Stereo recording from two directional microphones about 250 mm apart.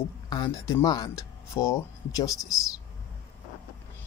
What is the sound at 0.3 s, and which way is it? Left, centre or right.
Speech, centre.